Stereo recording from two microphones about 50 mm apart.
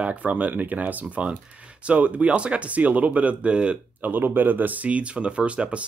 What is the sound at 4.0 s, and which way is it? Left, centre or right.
Speech, right.